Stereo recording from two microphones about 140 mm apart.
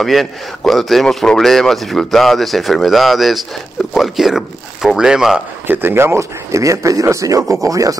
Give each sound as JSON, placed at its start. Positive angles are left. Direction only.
{"t": 0.0, "sound": "a man's voice", "side_deg": 0}
{"t": 5.7, "sound": "speech", "side_deg": -15}